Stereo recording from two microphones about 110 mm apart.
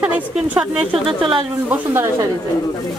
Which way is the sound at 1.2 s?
50° right (ahead or behind).